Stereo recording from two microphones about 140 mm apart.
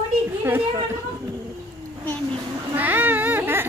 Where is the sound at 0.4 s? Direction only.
15° right (ahead or behind).